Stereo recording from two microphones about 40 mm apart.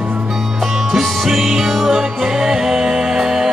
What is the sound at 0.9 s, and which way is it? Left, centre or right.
Music, centre.